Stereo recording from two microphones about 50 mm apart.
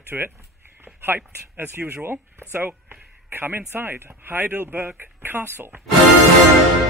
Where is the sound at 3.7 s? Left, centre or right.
Right.